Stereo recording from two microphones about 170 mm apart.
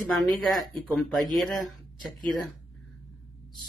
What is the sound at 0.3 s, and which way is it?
Speech, centre (ahead or behind).